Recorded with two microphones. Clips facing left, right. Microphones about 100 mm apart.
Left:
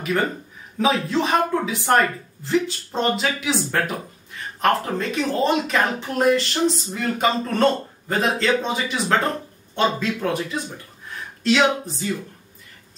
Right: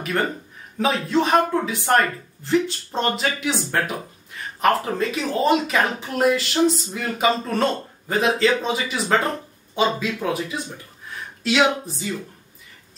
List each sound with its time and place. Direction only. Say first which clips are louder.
0.7 s speech: even; centre (ahead or behind)